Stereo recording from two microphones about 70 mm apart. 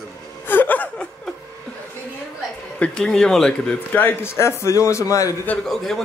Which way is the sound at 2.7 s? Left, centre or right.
Centre.